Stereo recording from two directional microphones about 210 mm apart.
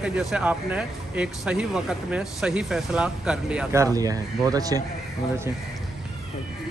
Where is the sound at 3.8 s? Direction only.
15° right (ahead or behind).